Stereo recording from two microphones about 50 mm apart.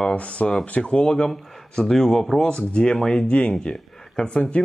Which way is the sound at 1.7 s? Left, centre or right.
Centre.